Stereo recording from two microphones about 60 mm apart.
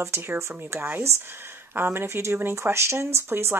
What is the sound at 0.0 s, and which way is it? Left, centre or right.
Speech, right.